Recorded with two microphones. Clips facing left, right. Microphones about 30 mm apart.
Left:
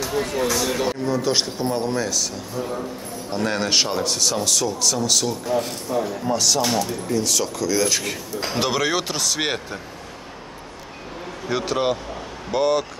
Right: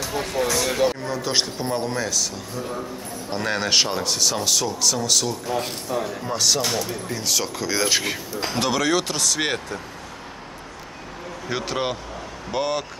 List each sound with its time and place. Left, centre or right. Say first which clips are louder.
0.0 s speech: left 2 dB; centre
3.3 s speech: left 1 dB; centre
7.4 s speech: left 2 dB; right
8.5 s speech: even; centre
11.4 s speech: left 4 dB; centre